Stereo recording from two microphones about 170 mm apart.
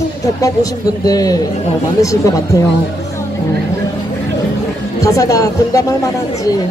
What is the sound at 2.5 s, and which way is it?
Speech, 20° left (ahead or behind).